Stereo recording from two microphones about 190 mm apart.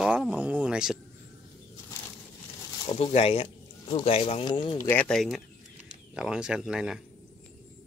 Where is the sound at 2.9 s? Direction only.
35° left (ahead or behind).